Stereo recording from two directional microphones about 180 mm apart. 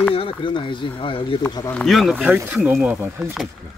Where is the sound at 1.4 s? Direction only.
10° left (ahead or behind); by 3.3 s 10° right (ahead or behind).